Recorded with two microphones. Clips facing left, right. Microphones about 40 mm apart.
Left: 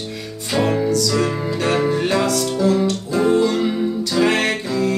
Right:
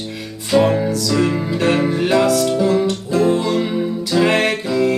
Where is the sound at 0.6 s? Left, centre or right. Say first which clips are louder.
Right 1 dB; centre.